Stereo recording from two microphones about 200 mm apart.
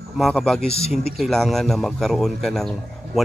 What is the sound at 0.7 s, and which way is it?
Speech, 30° left (ahead or behind).